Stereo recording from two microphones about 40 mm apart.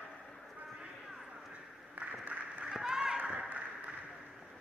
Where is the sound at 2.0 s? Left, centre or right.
Right.